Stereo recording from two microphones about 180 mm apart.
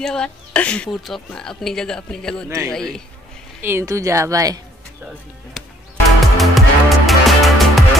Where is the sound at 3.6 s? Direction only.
15° right (ahead or behind).